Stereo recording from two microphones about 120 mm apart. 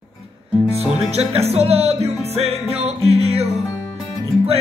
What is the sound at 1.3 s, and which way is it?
Music, 60° right (ahead or behind).